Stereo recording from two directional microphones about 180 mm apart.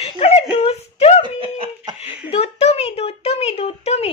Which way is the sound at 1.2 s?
30° right (ahead or behind).